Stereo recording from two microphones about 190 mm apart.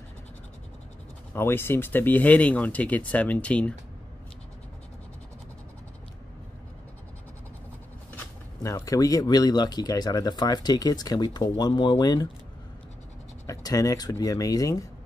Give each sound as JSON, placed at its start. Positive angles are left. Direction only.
{"t": 1.3, "sound": "speech", "side_deg": 10}
{"t": 8.6, "sound": "speech", "side_deg": 15}
{"t": 13.5, "sound": "speech", "side_deg": 20}